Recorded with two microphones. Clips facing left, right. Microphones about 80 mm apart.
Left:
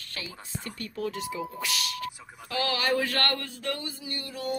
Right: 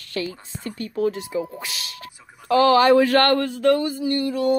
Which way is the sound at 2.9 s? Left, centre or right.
Right.